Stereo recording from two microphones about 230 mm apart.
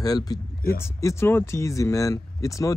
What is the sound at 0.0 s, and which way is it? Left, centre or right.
Speech, centre.